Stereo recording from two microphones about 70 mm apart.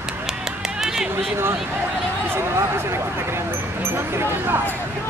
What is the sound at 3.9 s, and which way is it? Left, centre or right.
Speech, right.